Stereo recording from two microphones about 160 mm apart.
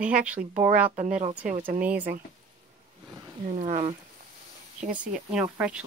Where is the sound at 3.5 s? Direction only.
45° right (ahead or behind).